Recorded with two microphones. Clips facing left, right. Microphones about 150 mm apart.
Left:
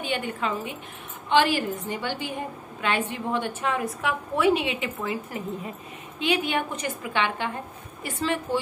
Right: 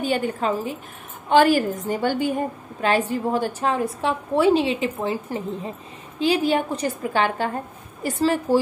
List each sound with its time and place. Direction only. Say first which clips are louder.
0.0 s a woman's voice: right 6 dB; 40° right (ahead or behind)